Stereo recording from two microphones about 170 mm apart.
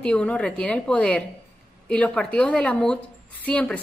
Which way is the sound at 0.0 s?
5° left (ahead or behind).